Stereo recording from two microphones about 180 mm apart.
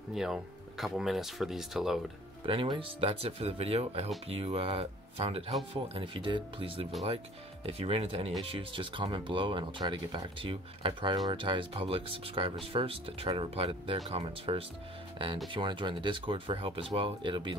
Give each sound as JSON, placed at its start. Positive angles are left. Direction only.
{"t": 0.1, "sound": "speech", "side_deg": 0}
{"t": 2.4, "sound": "speech", "side_deg": -30}